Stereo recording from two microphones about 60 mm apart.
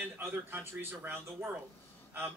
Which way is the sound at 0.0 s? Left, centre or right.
Right.